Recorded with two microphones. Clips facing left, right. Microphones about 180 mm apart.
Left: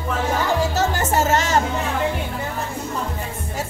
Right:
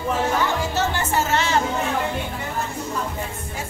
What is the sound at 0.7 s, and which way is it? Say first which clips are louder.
Music: left 2 dB; 40° left (ahead or behind).